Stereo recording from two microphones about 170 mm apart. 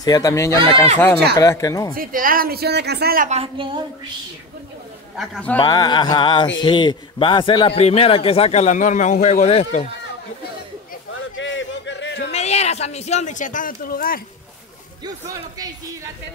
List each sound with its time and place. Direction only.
0.0 s speech: 20° left (ahead or behind)
2.0 s speech: 55° right (ahead or behind)
3.3 s a woman's voice: 35° right (ahead or behind)
5.1 s a man's voice: 5° left (ahead or behind)
5.6 s speech: 25° left (ahead or behind); by 9.8 s 40° left (ahead or behind)
11.3 s a sound: 90° left
12.3 s speech: 40° left (ahead or behind); by 14.2 s 60° left (ahead or behind)
15.0 s a man's voice: 20° right (ahead or behind)